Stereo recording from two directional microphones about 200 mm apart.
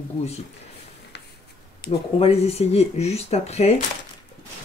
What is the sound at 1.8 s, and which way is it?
Speech, 50° left (ahead or behind).